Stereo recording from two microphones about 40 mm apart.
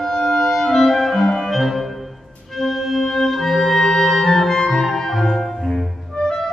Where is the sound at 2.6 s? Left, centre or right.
Centre.